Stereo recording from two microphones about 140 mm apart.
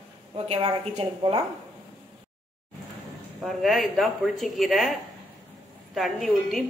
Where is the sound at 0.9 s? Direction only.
45° right (ahead or behind).